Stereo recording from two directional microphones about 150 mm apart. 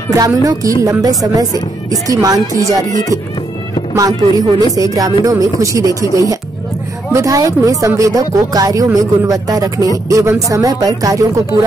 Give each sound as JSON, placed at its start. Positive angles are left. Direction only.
{"t": 0.1, "sound": "speech", "side_deg": -25}
{"t": 3.9, "sound": "speech", "side_deg": -25}
{"t": 7.1, "sound": "speech", "side_deg": -20}